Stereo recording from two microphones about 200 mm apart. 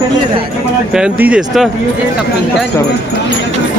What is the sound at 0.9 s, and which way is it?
Speech, 5° right (ahead or behind).